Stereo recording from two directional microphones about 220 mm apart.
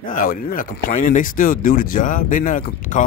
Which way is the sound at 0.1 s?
40° left (ahead or behind).